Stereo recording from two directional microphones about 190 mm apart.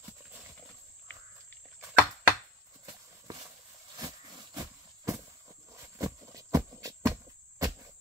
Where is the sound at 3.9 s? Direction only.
20° right (ahead or behind).